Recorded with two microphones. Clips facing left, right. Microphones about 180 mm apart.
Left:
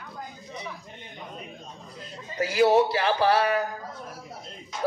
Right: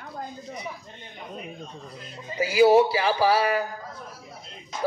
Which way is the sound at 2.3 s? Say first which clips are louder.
Right 3 dB; 5° right (ahead or behind).